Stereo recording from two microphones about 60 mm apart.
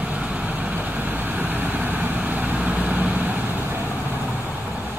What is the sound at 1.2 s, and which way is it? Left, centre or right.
Vehicle, right.